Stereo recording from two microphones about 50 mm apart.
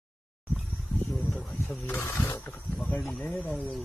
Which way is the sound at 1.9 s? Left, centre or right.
Left.